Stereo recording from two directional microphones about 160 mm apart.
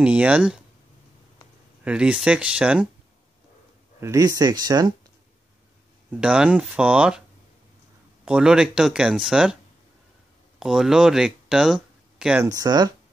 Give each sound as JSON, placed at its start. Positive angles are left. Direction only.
{"t": 0.0, "sound": "speech", "side_deg": -10}
{"t": 1.9, "sound": "speech", "side_deg": -5}
{"t": 4.0, "sound": "speech", "side_deg": -20}
{"t": 6.2, "sound": "speech", "side_deg": -5}
{"t": 8.3, "sound": "speech", "side_deg": -5}
{"t": 10.6, "sound": "speech", "side_deg": -5}
{"t": 12.4, "sound": "speech", "side_deg": -25}